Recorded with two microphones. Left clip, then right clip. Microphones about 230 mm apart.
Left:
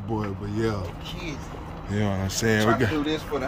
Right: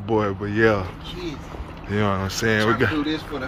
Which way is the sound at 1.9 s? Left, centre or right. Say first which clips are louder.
Right 6 dB; centre.